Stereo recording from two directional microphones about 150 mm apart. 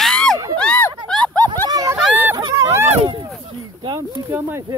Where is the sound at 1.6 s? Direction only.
25° right (ahead or behind).